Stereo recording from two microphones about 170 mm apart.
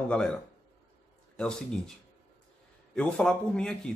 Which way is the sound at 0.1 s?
5° left (ahead or behind).